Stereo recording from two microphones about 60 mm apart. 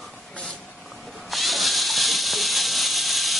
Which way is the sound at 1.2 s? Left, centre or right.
Centre.